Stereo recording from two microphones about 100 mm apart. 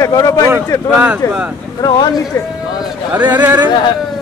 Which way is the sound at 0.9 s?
10° right (ahead or behind).